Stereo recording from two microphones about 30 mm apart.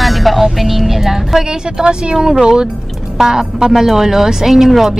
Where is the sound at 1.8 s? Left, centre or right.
Right.